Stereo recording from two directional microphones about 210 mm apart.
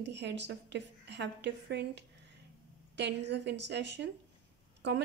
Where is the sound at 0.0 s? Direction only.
55° right (ahead or behind).